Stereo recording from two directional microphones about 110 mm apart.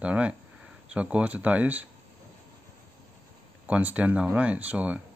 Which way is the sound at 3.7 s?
15° right (ahead or behind).